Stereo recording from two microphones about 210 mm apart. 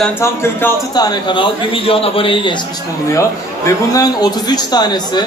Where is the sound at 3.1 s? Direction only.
15° left (ahead or behind).